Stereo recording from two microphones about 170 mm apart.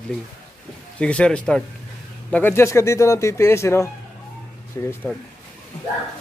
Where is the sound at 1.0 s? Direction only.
5° left (ahead or behind).